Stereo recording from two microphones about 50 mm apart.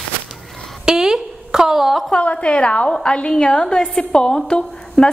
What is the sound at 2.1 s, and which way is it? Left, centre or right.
A woman's voice, left.